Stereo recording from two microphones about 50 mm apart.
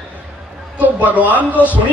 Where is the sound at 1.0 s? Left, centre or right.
Right.